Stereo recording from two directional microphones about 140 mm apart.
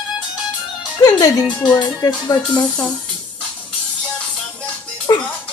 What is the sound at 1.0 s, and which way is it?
Music, 25° left (ahead or behind).